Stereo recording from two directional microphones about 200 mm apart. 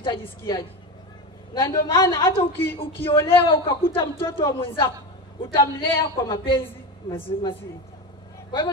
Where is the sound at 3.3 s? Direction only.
25° left (ahead or behind).